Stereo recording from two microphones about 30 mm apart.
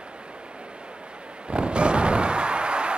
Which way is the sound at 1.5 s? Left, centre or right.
Right.